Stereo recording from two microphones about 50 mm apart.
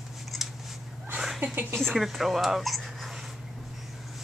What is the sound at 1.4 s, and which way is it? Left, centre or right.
Speech, right.